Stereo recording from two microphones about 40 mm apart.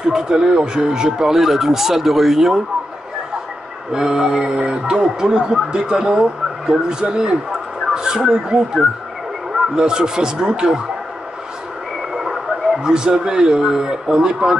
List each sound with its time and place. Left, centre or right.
0.1 s speech: centre
3.9 s speech: centre
5.0 s speech: centre
9.8 s speech: centre
12.1 s speech: centre